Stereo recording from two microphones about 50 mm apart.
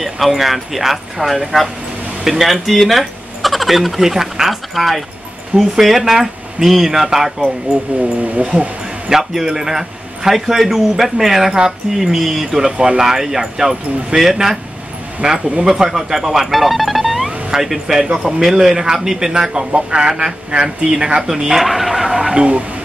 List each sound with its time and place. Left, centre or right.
0.0 s speech: centre
8.2 s speech: right
9.1 s speech: centre
15.2 s speech: centre